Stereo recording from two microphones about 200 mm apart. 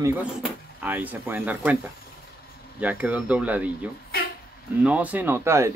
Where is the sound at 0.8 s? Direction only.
10° right (ahead or behind).